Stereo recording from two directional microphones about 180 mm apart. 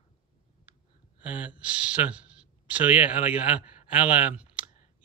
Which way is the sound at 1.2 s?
5° right (ahead or behind).